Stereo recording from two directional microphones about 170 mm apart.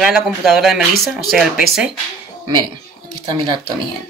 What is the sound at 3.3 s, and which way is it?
Speech, 25° right (ahead or behind).